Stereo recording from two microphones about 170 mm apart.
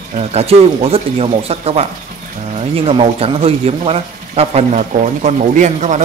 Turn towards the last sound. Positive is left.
turn(degrees=-45)  # may be behind; listen again after turning